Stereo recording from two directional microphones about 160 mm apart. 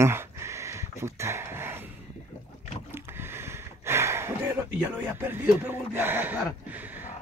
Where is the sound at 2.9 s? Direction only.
15° right (ahead or behind).